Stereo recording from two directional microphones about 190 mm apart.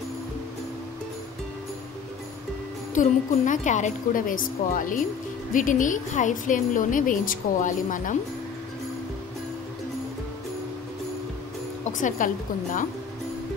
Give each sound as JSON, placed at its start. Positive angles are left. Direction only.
{"t": 2.9, "sound": "speech", "side_deg": 40}
{"t": 12.2, "sound": "speech", "side_deg": 45}